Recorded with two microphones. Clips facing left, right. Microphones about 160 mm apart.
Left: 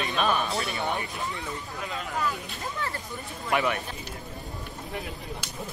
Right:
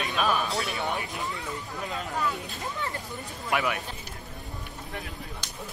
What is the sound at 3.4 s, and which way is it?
Speech, 5° right (ahead or behind).